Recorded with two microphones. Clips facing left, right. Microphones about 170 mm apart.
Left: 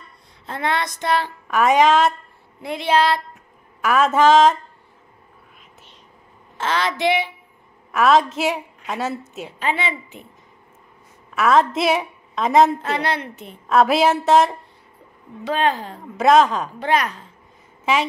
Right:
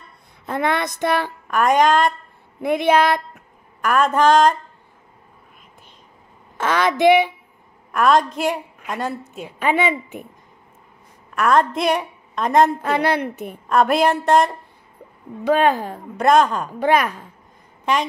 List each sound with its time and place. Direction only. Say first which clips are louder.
0.5 s speech: right 2 dB; 55° right (ahead or behind)
1.5 s a woman's voice: left 1 dB; centre (ahead or behind)
2.6 s speech: right 3 dB; 55° right (ahead or behind)
3.8 s a woman's voice: left 1 dB; 5° left (ahead or behind)
6.6 s speech: right 5 dB; 50° right (ahead or behind)
7.9 s a woman's voice: even; 5° left (ahead or behind)
9.6 s speech: right 5 dB; 50° right (ahead or behind)
11.3 s a woman's voice: even; 5° left (ahead or behind)
12.8 s speech: right 4 dB; 60° right (ahead or behind)
13.7 s a woman's voice: left 1 dB; centre (ahead or behind)
15.4 s speech: right 4 dB; 55° right (ahead or behind)
16.2 s a woman's voice: left 1 dB; centre (ahead or behind)
16.9 s speech: right 1 dB; 55° right (ahead or behind)
17.9 s a woman's voice: even; 5° left (ahead or behind)